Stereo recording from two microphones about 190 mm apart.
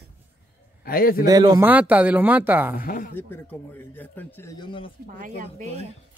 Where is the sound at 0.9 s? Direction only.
50° left (ahead or behind).